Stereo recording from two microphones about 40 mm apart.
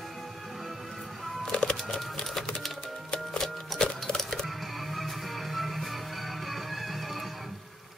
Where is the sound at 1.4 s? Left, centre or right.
Centre.